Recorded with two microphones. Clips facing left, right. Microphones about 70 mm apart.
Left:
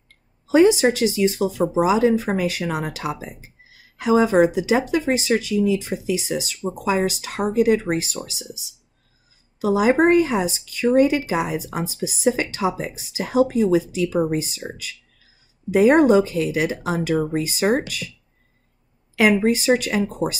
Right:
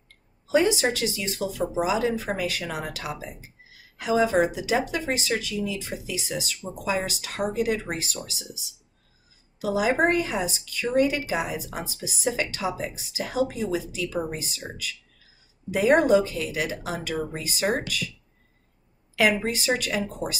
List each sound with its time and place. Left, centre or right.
0.5 s a woman's voice: left
9.6 s a woman's voice: left
19.1 s a woman's voice: left